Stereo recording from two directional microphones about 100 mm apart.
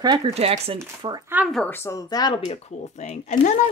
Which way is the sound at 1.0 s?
55° right (ahead or behind).